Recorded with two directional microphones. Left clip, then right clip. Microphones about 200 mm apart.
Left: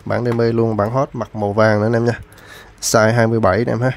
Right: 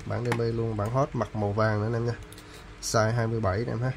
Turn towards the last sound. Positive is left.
turn(degrees=45)  # may be behind; listen again after turning